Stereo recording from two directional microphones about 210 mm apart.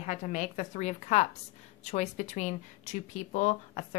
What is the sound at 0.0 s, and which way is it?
Speech, 35° left (ahead or behind).